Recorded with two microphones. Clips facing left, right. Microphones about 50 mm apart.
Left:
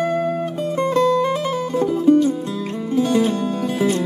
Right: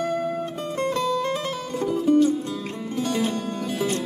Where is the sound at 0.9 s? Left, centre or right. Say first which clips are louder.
Left 9 dB; left.